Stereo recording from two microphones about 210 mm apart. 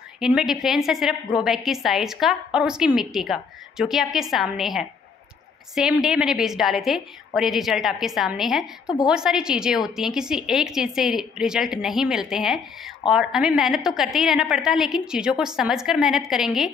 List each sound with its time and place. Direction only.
0.2 s a woman's voice: centre (ahead or behind)